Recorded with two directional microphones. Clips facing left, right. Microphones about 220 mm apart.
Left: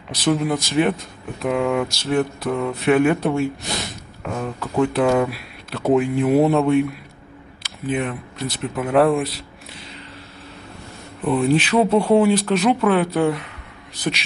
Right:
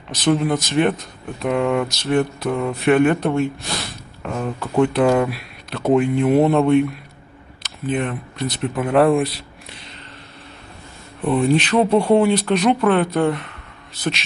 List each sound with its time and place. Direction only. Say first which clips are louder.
0.3 s speech: right 2 dB; 5° left (ahead or behind)
7.6 s speech: right 1 dB; 5° left (ahead or behind)
11.2 s speech: right 1 dB; 5° left (ahead or behind)